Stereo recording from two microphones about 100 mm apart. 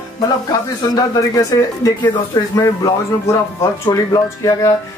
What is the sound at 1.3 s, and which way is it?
Speech, 35° left (ahead or behind).